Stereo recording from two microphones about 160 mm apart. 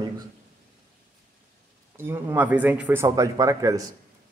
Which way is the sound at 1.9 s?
15° right (ahead or behind).